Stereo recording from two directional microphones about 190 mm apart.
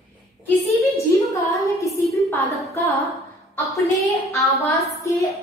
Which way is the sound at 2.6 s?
15° left (ahead or behind).